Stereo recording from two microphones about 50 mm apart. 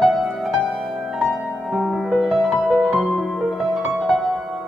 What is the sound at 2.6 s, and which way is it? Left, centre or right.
Music, right.